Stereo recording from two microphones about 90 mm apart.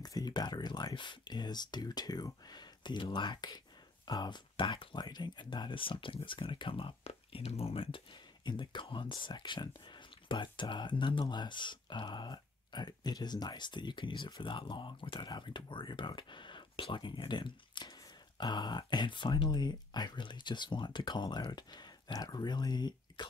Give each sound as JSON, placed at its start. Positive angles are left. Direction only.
{"t": 0.0, "sound": "speech", "side_deg": 45}
{"t": 7.3, "sound": "speech", "side_deg": 90}